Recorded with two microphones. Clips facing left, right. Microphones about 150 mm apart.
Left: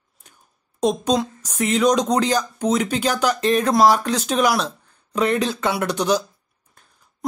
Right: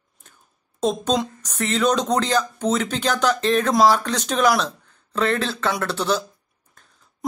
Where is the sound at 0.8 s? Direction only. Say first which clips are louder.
Left 2 dB; 10° left (ahead or behind).